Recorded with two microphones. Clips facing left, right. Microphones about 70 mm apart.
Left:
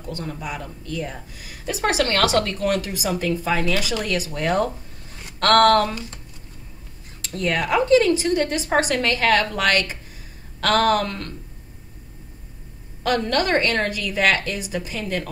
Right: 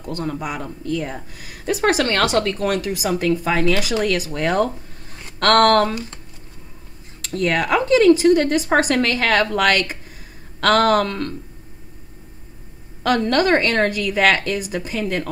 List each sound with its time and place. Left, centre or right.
0.0 s a woman's voice: right
2.1 s speech: right
2.7 s a woman's voice: right
7.2 s a woman's voice: right
13.0 s a woman's voice: right